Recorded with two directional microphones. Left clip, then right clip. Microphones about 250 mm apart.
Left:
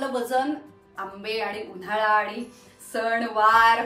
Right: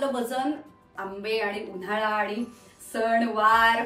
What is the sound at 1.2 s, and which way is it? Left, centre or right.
Speech, centre.